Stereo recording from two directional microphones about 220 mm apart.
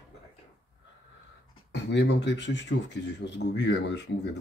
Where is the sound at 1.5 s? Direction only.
50° left (ahead or behind).